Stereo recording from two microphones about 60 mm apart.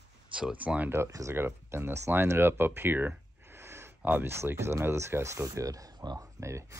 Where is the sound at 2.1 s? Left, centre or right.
Right.